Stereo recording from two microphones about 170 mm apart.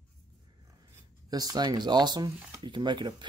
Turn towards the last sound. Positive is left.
turn(degrees=-25)  # may be behind; listen again after turning